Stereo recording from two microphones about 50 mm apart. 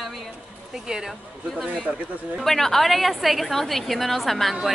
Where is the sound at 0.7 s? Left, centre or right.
Centre.